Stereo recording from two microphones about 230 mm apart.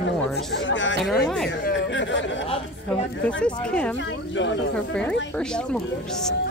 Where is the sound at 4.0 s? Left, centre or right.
Left.